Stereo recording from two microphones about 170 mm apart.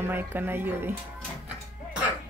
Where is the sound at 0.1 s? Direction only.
10° right (ahead or behind).